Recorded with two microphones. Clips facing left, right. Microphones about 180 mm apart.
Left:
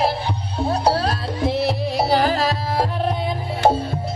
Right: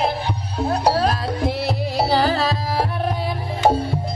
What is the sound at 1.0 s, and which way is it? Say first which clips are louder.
Music: right 2 dB; 25° left (ahead or behind).